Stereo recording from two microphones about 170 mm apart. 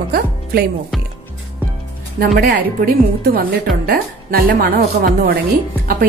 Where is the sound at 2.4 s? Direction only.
55° right (ahead or behind).